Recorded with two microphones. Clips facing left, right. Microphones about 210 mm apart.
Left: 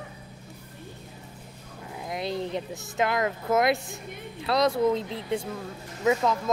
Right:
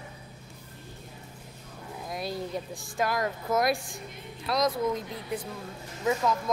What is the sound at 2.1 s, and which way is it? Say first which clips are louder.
Speech: left 4 dB; 25° left (ahead or behind).